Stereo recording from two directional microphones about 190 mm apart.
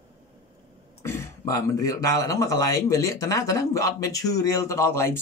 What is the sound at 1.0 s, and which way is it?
Speech, 15° left (ahead or behind).